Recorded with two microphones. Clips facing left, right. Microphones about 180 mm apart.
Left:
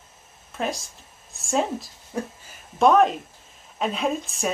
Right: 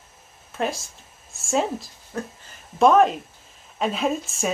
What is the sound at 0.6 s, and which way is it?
A woman's voice, centre (ahead or behind).